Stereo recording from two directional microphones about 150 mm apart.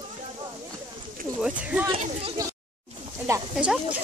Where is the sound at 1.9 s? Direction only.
40° right (ahead or behind).